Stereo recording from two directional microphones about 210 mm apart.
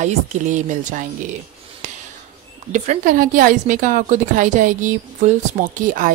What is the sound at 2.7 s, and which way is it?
Speech, 35° right (ahead or behind).